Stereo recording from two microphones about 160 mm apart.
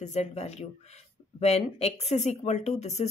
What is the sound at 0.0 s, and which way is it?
Speech, 45° left (ahead or behind).